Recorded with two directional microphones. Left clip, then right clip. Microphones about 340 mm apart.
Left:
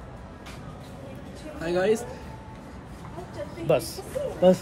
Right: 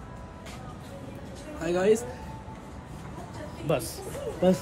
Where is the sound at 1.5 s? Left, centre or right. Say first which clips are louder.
Even; centre.